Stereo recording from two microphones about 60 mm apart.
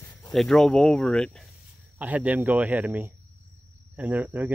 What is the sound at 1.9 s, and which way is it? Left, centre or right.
Speech, right.